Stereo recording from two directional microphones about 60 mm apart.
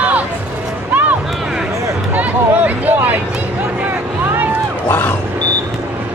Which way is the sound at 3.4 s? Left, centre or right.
Right.